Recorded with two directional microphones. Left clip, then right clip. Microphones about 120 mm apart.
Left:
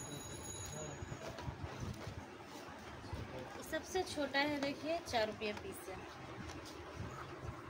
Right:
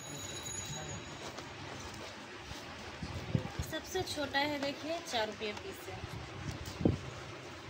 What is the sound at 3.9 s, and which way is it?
A woman's voice, 20° left (ahead or behind).